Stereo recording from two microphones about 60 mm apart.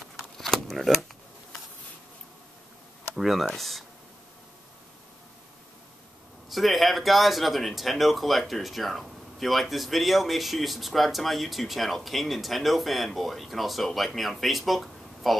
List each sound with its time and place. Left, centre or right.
0.2 s a sound: centre
3.2 s speech: centre
6.5 s speech: centre